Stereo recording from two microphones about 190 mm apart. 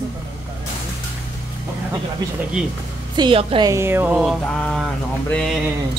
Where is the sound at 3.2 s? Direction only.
30° right (ahead or behind).